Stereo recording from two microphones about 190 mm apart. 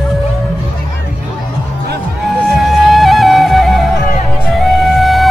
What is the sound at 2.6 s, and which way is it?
Music, centre (ahead or behind).